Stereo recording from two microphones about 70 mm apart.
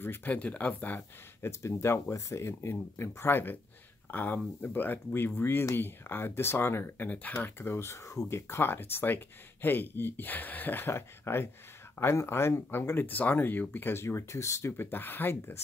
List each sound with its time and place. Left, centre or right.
0.0 s speech: left
1.6 s speech: left
14.7 s speech: left